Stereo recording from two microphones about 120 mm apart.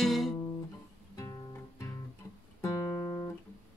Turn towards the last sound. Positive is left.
turn(degrees=25)  # may be behind; listen again after turning